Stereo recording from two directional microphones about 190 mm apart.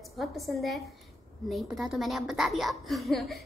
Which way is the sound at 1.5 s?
Centre (ahead or behind).